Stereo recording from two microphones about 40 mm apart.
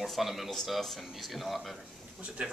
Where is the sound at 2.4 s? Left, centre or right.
Right.